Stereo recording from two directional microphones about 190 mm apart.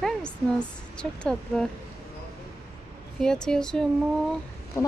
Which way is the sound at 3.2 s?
5° left (ahead or behind).